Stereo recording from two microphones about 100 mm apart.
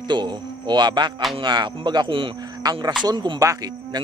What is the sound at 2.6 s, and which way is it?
Speech, 45° right (ahead or behind).